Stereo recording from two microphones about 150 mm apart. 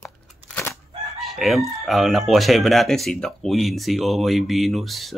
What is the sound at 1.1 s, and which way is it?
Chicken, centre (ahead or behind).